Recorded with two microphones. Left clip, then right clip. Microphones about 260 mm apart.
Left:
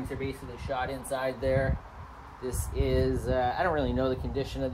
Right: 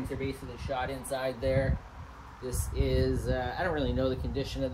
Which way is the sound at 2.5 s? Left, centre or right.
Left.